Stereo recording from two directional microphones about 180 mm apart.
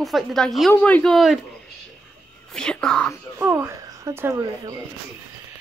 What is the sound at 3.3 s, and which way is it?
Speech, 10° right (ahead or behind).